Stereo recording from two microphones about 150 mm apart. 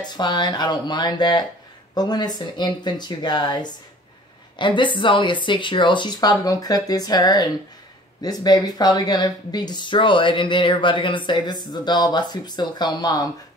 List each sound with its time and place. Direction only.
0.0 s speech: 30° left (ahead or behind)